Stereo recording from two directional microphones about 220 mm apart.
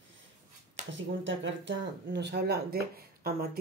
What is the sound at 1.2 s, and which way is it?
Speech, 55° right (ahead or behind).